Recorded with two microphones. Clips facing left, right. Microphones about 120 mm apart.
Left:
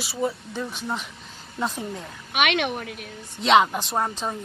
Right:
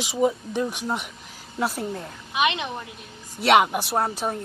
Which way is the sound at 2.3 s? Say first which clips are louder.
Left 1 dB; 70° left (ahead or behind).